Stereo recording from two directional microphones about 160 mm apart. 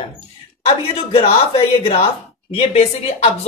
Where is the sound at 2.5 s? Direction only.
40° left (ahead or behind).